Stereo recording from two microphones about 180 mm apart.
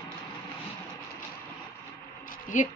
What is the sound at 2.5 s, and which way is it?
Speech, 45° left (ahead or behind).